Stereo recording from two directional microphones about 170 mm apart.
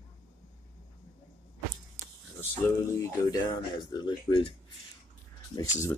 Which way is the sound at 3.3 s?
30° left (ahead or behind).